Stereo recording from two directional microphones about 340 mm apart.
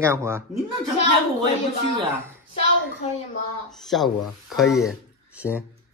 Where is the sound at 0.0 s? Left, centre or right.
Centre.